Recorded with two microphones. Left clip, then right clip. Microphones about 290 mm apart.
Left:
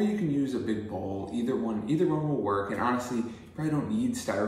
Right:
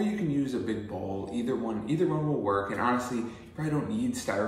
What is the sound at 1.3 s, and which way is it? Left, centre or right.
A man's voice, centre.